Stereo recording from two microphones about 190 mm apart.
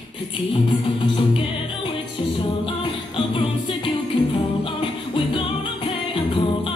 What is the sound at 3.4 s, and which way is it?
Music, 25° left (ahead or behind).